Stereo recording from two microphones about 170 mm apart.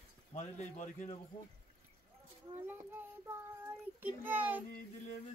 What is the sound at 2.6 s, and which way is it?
A child's voice, 10° right (ahead or behind).